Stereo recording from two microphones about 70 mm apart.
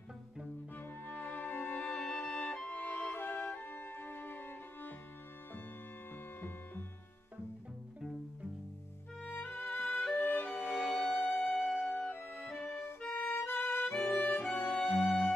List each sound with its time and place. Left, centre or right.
0.7 s music: left
9.2 s music: centre
9.8 s music: centre
10.7 s music: centre
11.9 s music: centre
12.2 s music: centre
12.5 s music: centre
13.6 s violin: centre
13.9 s music: centre